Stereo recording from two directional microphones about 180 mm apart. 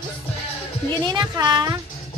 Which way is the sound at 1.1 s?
25° right (ahead or behind).